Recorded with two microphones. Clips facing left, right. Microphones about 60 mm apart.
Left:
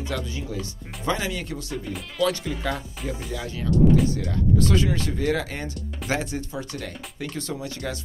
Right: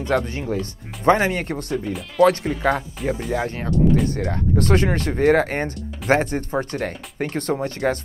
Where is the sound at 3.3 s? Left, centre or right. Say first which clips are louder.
Right 4 dB; right.